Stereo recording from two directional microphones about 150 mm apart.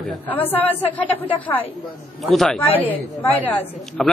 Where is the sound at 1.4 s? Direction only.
10° left (ahead or behind).